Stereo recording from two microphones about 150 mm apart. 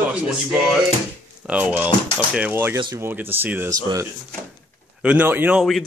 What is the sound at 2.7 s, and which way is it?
Speech, 30° right (ahead or behind).